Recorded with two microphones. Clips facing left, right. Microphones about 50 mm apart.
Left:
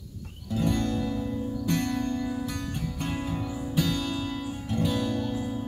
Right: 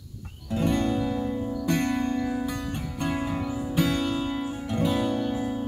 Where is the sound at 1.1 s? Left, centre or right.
Right.